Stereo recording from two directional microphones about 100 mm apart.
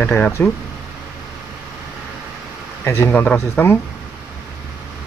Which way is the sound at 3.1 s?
15° left (ahead or behind).